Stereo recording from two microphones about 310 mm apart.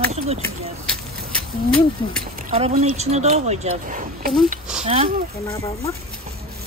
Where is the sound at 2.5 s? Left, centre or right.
Right.